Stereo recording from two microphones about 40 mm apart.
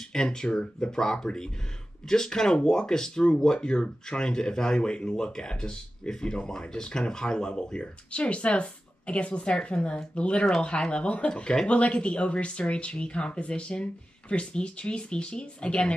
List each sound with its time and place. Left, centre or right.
0.1 s speech: centre